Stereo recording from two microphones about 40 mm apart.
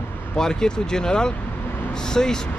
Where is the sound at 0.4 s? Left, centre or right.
Centre.